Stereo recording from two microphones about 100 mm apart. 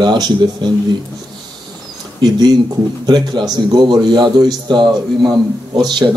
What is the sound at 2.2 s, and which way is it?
A man's voice, 45° right (ahead or behind).